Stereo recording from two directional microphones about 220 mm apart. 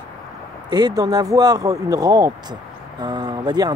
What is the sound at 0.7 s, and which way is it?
Speech, 15° right (ahead or behind).